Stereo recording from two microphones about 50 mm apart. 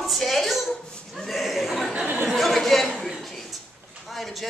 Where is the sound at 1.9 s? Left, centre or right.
Right.